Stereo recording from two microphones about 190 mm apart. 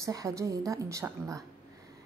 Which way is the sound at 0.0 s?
15° right (ahead or behind).